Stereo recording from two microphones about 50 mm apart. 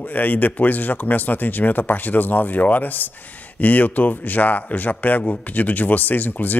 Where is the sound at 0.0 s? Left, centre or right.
Left.